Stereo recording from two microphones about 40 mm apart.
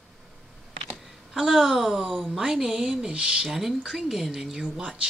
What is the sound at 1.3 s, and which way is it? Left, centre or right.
A woman's voice, centre.